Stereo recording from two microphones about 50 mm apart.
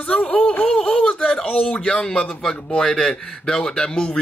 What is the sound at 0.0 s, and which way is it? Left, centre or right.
Speech, left.